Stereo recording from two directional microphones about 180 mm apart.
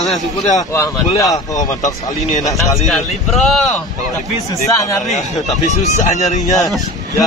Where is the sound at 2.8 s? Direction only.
Centre (ahead or behind).